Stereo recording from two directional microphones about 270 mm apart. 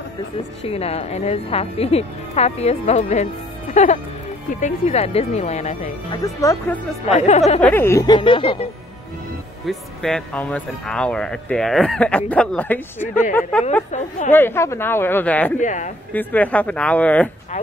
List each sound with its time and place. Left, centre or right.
0.7 s a woman's voice: left
6.2 s speech: centre
7.1 s a woman's voice: left
7.6 s speech: centre
9.7 s speech: centre
13.9 s a woman's voice: left
14.3 s speech: centre
15.6 s a woman's voice: left
16.1 s speech: centre